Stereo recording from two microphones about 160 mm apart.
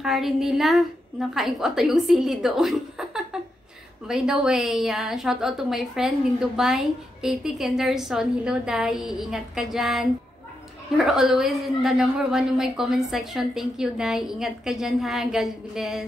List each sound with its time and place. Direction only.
0.0 s a woman's voice: centre (ahead or behind)
11.1 s a woman's voice: 5° right (ahead or behind)